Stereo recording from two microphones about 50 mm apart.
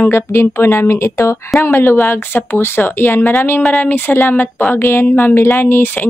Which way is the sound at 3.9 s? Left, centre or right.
Left.